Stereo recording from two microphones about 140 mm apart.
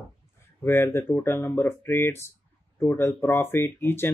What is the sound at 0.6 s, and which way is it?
Speech, 15° left (ahead or behind).